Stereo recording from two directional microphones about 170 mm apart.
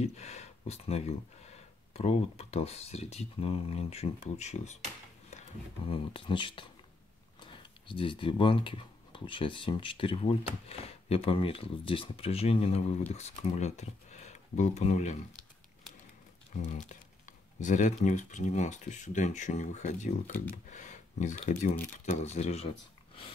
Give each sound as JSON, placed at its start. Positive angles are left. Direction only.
{"t": 0.0, "sound": "speech", "side_deg": 40}
{"t": 5.9, "sound": "speech", "side_deg": 30}
{"t": 7.9, "sound": "speech", "side_deg": 30}
{"t": 16.5, "sound": "speech", "side_deg": 45}